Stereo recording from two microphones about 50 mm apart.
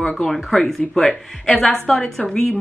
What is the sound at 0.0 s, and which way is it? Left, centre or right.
Speech, centre.